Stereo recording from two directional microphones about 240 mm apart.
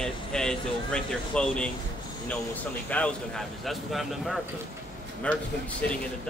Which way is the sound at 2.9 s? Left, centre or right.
Centre.